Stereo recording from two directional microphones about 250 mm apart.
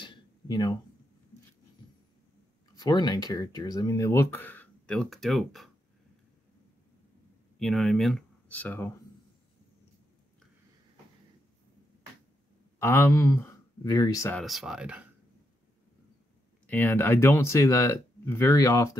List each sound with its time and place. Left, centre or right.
0.0 s a sound: centre
2.7 s speech: centre
7.5 s speech: centre
12.7 s speech: centre
14.4 s speech: centre
16.6 s speech: centre